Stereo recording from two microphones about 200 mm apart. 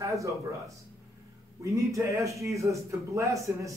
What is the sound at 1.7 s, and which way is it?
Speech, 15° right (ahead or behind).